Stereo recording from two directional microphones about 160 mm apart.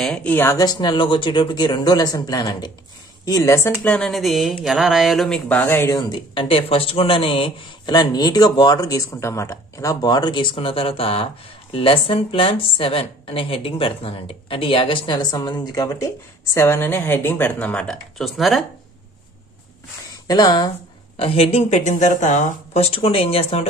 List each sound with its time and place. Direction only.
0.0 s a woman's voice: 5° left (ahead or behind)
20.2 s a woman's voice: 25° left (ahead or behind)
21.2 s a woman's voice: 40° left (ahead or behind)